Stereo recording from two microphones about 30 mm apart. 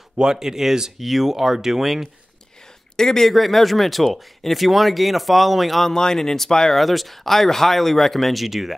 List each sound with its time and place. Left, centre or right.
0.2 s speech: centre
3.0 s speech: centre
3.3 s speech: centre
5.9 s speech: centre
6.7 s speech: centre